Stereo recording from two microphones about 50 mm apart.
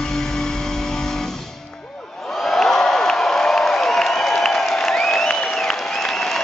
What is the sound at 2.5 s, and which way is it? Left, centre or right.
Crowd, centre.